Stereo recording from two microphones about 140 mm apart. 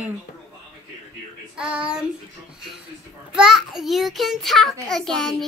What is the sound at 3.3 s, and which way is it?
A child's voice, 5° right (ahead or behind).